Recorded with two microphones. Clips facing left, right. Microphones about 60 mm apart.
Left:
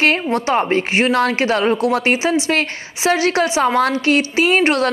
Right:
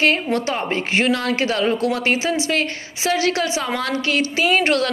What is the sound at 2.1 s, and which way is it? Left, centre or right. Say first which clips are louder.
A woman's voice: left 3 dB; left.